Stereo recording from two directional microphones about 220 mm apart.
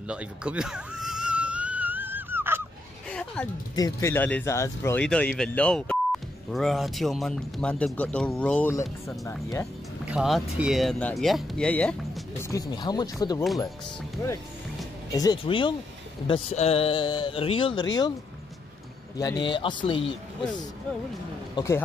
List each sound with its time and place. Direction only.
0.1 s a sound: 5° right (ahead or behind)
3.1 s a sound: 5° left (ahead or behind)
3.7 s speech: 15° left (ahead or behind)
10.0 s speech: 5° right (ahead or behind); by 13.4 s 15° left (ahead or behind)
15.1 s speech: 20° left (ahead or behind)
19.1 s speech: 15° left (ahead or behind)
21.5 s speech: 15° left (ahead or behind)